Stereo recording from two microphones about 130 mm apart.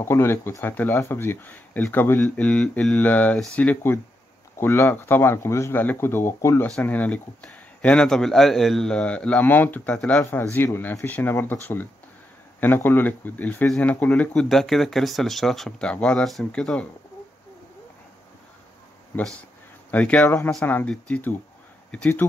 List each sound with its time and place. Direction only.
0.0 s speech: 20° left (ahead or behind)
10.2 s speech: 20° left (ahead or behind)
19.1 s speech: 10° left (ahead or behind)